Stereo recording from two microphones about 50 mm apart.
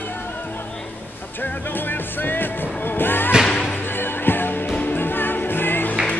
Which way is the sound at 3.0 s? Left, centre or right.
Left.